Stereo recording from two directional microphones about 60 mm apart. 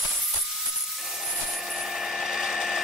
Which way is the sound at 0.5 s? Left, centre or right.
Centre.